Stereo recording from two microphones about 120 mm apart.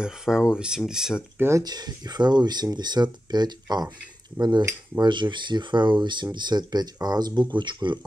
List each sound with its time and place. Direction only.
0.0 s speech: 5° right (ahead or behind)
1.6 s speech: 35° right (ahead or behind)
5.0 s speech: 40° right (ahead or behind)